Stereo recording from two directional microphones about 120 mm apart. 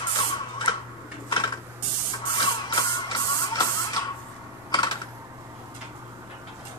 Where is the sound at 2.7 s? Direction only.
35° left (ahead or behind).